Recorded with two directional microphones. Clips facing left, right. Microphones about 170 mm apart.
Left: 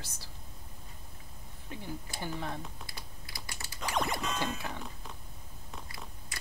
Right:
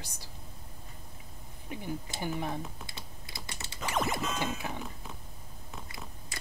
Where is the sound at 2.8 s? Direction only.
25° right (ahead or behind).